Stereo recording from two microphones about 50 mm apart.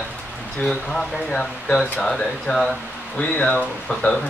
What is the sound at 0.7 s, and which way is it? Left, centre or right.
Speech, centre.